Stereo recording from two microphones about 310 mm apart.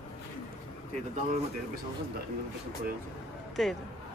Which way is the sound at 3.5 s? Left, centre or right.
Centre.